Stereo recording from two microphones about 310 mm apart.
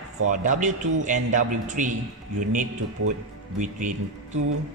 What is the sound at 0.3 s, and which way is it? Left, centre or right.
A man's voice, right.